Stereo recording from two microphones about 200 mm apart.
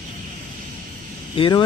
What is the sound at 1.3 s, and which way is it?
Speech, 25° left (ahead or behind).